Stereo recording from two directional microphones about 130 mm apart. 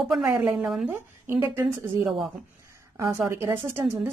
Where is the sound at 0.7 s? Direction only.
5° right (ahead or behind).